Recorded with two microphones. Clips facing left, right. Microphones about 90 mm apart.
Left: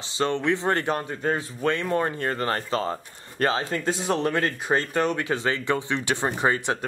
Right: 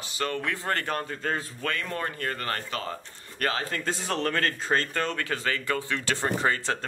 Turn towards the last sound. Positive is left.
turn(degrees=15)  # may be behind; listen again after turning